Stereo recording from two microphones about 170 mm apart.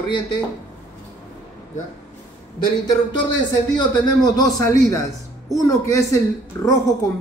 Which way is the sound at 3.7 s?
25° left (ahead or behind).